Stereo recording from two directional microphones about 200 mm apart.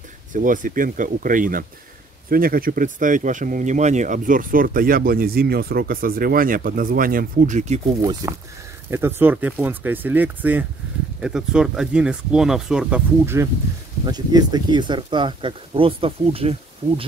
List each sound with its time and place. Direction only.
0.3 s speech: 40° right (ahead or behind)
8.0 s speech: 15° right (ahead or behind)